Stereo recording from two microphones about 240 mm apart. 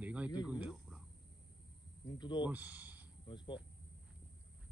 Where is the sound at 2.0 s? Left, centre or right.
Centre.